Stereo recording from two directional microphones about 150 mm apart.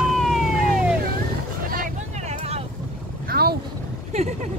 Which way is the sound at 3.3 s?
90° right.